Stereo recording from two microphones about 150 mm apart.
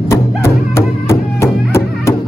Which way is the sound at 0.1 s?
20° left (ahead or behind).